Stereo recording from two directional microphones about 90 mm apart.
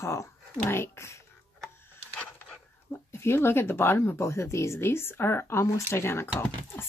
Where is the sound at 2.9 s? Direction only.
30° left (ahead or behind).